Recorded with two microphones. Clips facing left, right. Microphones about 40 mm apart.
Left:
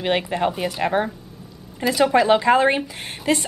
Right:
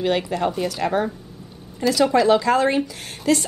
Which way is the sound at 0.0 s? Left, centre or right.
Left.